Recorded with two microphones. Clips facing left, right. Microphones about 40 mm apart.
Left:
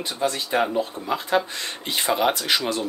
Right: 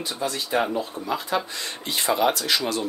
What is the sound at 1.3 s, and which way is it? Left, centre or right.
Speech, left.